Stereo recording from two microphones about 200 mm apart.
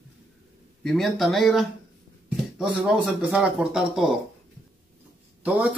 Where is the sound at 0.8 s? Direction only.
Centre (ahead or behind).